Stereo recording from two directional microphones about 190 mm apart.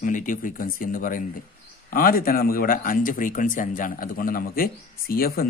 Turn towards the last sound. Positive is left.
turn(degrees=50)  # may be behind; listen again after turning